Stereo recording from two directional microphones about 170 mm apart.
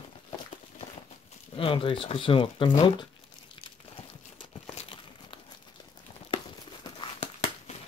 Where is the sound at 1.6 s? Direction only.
30° left (ahead or behind).